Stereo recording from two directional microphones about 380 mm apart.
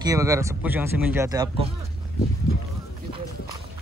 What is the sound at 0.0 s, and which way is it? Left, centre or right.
Speech, centre.